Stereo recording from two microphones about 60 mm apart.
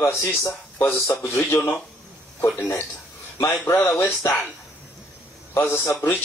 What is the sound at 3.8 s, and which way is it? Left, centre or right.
Speech, left.